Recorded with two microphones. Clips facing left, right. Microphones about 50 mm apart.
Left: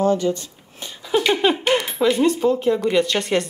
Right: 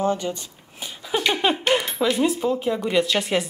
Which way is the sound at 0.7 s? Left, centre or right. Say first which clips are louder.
Left 5 dB; centre.